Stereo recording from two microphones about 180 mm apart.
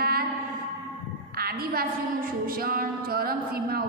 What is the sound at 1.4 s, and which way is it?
A woman's voice, 55° right (ahead or behind).